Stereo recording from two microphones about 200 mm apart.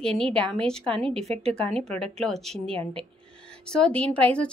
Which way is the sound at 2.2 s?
Centre (ahead or behind).